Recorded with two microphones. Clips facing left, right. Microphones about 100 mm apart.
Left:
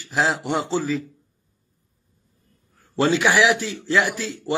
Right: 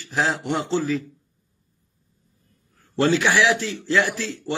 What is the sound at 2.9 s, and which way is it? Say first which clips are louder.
A man's voice: left 1 dB; 10° left (ahead or behind).